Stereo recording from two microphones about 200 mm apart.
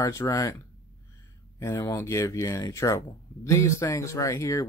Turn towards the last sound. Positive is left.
turn(degrees=15)  # may be behind; listen again after turning